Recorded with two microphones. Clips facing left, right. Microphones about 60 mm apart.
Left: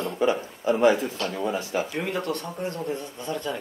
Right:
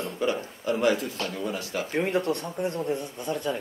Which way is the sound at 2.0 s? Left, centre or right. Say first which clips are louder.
Right 2 dB; right.